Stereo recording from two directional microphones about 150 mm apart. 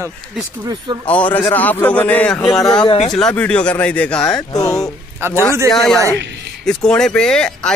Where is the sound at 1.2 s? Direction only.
30° left (ahead or behind).